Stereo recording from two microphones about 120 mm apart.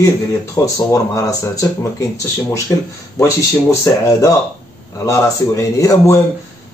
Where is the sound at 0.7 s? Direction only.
25° left (ahead or behind).